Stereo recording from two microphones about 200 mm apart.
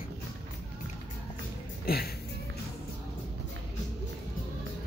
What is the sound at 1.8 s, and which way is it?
Speech, 50° left (ahead or behind).